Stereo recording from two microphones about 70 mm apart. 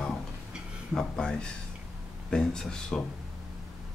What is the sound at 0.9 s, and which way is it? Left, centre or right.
Speech, centre.